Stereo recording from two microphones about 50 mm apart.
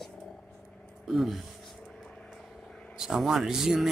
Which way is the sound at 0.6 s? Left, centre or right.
Centre.